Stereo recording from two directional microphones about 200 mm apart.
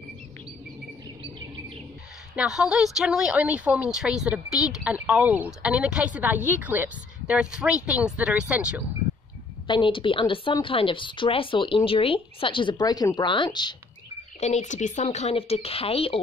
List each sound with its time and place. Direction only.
2.3 s a woman's voice: 5° right (ahead or behind)
9.7 s a woman's voice: 25° left (ahead or behind)
14.4 s speech: 35° left (ahead or behind)